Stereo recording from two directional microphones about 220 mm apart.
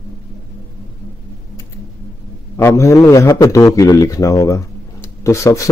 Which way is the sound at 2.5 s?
10° left (ahead or behind).